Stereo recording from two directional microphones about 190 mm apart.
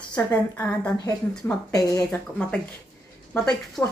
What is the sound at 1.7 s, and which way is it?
Speech, 20° left (ahead or behind).